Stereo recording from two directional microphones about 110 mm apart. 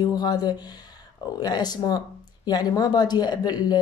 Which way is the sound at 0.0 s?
40° left (ahead or behind).